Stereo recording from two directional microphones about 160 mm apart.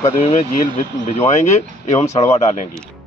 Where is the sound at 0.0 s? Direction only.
40° left (ahead or behind).